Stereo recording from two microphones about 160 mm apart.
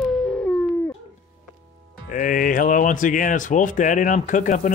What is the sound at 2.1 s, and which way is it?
Speech, 60° left (ahead or behind).